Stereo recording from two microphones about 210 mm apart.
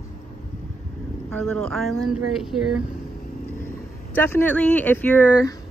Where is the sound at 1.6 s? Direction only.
Centre (ahead or behind).